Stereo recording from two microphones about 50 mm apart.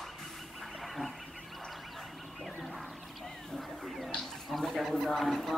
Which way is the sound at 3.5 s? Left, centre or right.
Centre.